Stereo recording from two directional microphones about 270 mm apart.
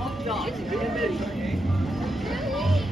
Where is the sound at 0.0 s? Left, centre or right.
Centre.